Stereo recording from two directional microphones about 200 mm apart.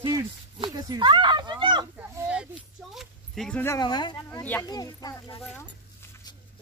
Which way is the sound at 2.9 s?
Centre (ahead or behind).